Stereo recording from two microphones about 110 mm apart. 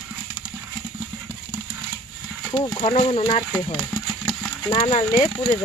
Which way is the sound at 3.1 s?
55° left (ahead or behind).